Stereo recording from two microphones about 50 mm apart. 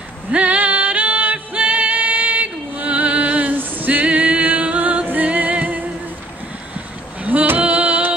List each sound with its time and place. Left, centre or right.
0.3 s music: right
7.2 s female singing: right